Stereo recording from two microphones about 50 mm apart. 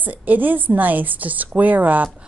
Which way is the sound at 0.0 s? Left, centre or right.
Right.